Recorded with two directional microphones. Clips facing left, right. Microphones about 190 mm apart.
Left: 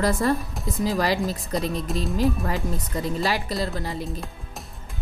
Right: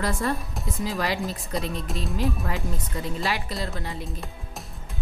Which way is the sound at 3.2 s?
35° left (ahead or behind).